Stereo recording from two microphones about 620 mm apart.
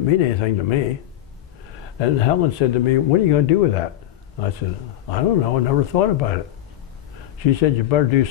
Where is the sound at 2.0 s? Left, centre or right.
Left.